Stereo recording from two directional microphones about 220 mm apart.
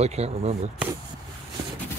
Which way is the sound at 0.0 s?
30° right (ahead or behind).